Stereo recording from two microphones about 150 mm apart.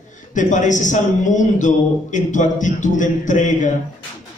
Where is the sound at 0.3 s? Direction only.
55° left (ahead or behind).